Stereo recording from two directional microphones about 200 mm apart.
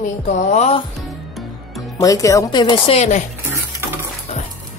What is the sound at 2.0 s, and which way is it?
Speech, 15° left (ahead or behind).